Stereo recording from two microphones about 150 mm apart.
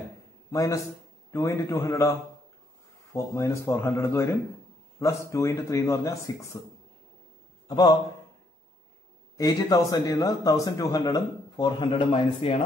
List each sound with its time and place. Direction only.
0.5 s a man's voice: 20° left (ahead or behind)
7.6 s a man's voice: 25° left (ahead or behind)
9.4 s speech: 25° left (ahead or behind)
11.9 s a man's voice: 35° left (ahead or behind)